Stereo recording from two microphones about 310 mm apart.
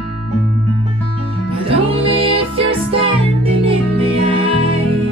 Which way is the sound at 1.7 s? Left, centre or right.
Centre.